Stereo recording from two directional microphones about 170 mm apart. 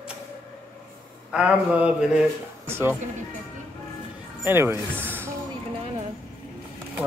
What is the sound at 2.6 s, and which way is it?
Speech, 15° right (ahead or behind).